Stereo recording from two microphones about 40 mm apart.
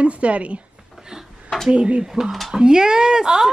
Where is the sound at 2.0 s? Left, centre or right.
Centre.